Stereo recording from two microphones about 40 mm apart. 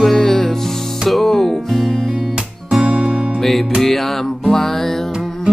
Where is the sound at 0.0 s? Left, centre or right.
Centre.